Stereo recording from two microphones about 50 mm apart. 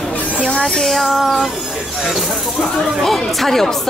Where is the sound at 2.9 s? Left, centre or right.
Centre.